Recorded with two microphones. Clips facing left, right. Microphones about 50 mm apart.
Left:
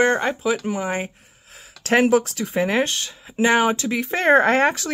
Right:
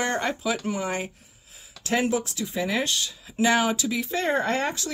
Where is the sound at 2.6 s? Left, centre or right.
Left.